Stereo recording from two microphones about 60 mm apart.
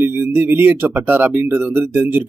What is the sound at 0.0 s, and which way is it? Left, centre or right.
Speech, right.